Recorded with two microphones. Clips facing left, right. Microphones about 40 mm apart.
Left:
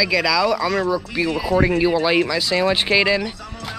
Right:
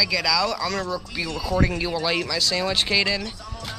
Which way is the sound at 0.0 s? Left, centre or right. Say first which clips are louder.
Left 5 dB; centre.